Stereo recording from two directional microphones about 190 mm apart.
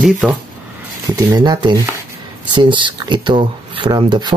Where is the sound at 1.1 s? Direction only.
20° right (ahead or behind).